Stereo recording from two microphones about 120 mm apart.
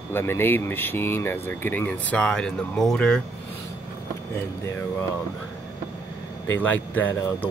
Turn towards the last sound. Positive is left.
turn(degrees=15)  # may be behind; listen again after turning